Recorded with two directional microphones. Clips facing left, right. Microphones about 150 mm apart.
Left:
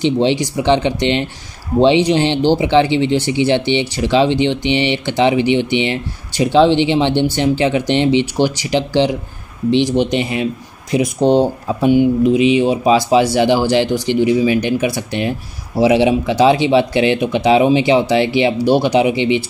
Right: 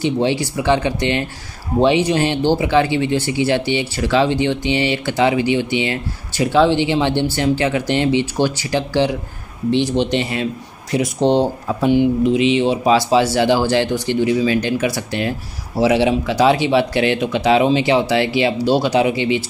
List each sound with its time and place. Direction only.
0.0 s speech: 20° left (ahead or behind)